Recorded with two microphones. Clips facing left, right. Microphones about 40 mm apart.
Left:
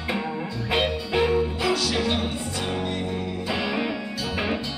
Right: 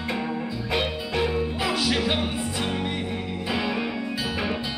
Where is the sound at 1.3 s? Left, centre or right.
Centre.